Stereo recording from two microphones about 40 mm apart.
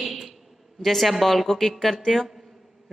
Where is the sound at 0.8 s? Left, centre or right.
Centre.